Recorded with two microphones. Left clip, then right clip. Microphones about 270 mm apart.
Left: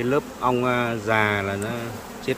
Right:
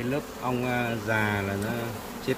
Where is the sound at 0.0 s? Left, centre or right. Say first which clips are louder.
Left 8 dB; centre.